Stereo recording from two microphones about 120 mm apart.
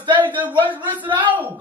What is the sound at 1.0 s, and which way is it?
Speech, 40° right (ahead or behind).